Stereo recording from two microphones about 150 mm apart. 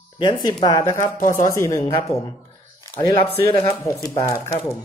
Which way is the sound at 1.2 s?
60° left (ahead or behind).